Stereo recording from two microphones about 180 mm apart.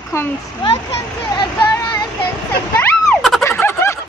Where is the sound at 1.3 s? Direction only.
25° left (ahead or behind).